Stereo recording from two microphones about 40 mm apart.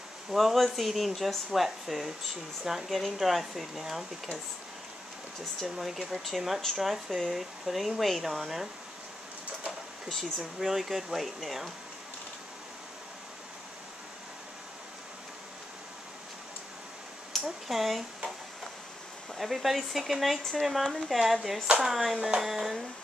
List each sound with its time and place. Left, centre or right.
0.3 s speech: centre
5.8 s speech: centre
9.7 s speech: centre
17.3 s a sound: centre
19.3 s speech: centre
21.6 s speech: centre
21.9 s speech: centre